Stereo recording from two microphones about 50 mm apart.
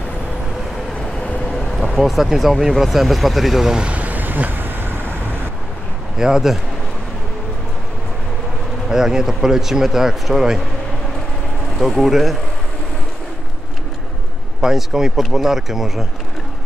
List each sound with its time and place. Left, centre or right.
0.9 s vehicle: left
2.0 s speech: centre
3.8 s vehicle: right
6.1 s speech: centre
8.8 s speech: centre
11.9 s speech: centre
14.6 s speech: centre